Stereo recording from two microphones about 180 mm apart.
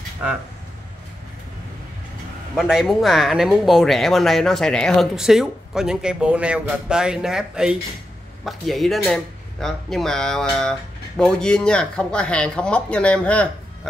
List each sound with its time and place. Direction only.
2.5 s speech: centre (ahead or behind)